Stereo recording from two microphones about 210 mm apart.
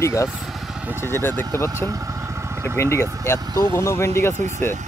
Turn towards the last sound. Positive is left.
turn(degrees=-35)  # may be behind; listen again after turning